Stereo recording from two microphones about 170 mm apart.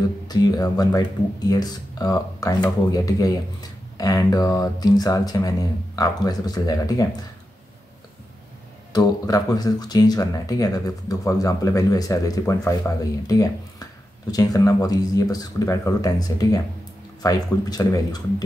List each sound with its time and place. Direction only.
0.3 s speech: 20° left (ahead or behind)
8.9 s speech: 20° left (ahead or behind)